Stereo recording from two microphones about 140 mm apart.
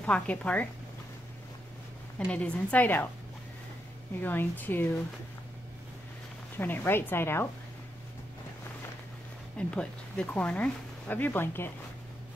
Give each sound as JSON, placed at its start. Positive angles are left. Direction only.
{"t": 0.0, "sound": "speech", "side_deg": 10}
{"t": 2.1, "sound": "speech", "side_deg": 10}
{"t": 4.2, "sound": "speech", "side_deg": 15}
{"t": 6.5, "sound": "speech", "side_deg": 15}
{"t": 9.6, "sound": "speech", "side_deg": 5}